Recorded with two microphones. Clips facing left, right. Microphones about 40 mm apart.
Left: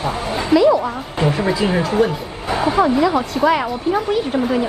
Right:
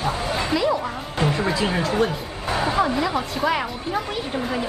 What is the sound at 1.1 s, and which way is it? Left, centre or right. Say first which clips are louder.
Speech: left 4 dB; left.